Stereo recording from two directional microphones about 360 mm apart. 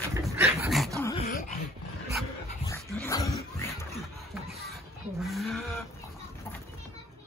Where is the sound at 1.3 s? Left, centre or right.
Left.